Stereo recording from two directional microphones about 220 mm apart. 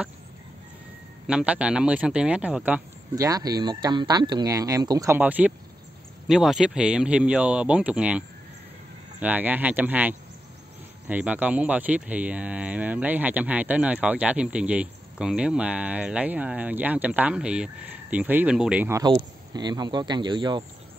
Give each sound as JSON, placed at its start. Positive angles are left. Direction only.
{"t": 1.2, "sound": "speech", "side_deg": -5}
{"t": 9.2, "sound": "speech", "side_deg": -5}